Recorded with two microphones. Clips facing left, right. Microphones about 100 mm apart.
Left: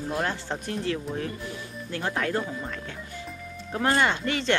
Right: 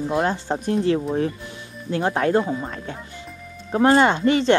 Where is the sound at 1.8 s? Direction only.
35° right (ahead or behind).